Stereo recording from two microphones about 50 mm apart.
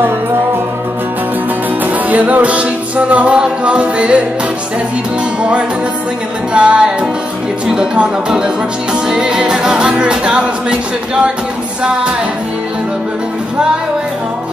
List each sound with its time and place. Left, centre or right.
1.9 s music: right
6.5 s music: right
7.6 s speech: centre
9.0 s music: centre